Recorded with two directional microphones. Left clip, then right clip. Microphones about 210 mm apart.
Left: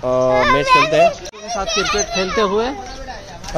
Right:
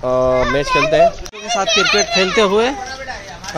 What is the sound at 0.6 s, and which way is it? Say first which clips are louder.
Speech: left 3 dB; 40° left (ahead or behind).